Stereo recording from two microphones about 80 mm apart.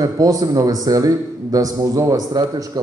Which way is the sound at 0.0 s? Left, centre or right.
Right.